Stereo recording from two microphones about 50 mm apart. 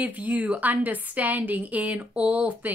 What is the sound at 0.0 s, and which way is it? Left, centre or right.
A woman's voice, right.